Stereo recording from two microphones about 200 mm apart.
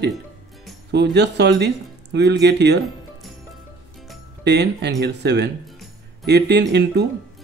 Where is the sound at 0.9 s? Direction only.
60° right (ahead or behind).